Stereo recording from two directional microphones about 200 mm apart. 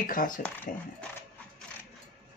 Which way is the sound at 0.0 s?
45° left (ahead or behind).